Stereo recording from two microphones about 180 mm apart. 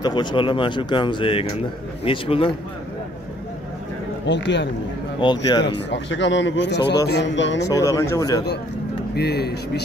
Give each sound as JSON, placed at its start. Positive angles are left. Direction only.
{"t": 0.0, "sound": "a man's voice", "side_deg": 25}
{"t": 4.3, "sound": "a man's voice", "side_deg": 75}
{"t": 5.2, "sound": "speech", "side_deg": 25}
{"t": 5.7, "sound": "a man's voice", "side_deg": 80}
{"t": 7.6, "sound": "speech", "side_deg": 20}
{"t": 9.1, "sound": "speech", "side_deg": 65}